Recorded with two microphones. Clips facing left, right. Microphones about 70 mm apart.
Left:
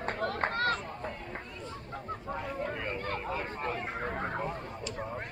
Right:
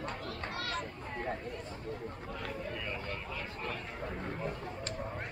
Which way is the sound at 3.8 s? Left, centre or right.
Left.